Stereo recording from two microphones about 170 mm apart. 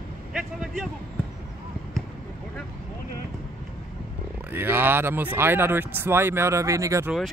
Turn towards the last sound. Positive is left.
turn(degrees=-20)  # may be behind; listen again after turning